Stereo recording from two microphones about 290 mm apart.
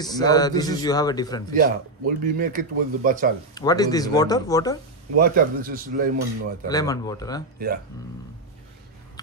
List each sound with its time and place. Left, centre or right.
0.0 s speech: centre
1.5 s speech: right
3.5 s speech: centre
5.2 s speech: right
6.7 s speech: centre
7.5 s speech: right